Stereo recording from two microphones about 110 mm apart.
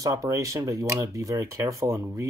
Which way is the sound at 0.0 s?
30° right (ahead or behind).